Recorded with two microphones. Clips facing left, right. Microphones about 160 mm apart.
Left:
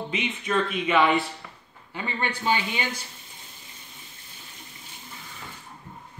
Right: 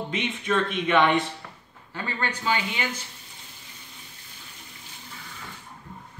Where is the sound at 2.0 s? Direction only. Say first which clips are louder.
Left 1 dB; 20° left (ahead or behind).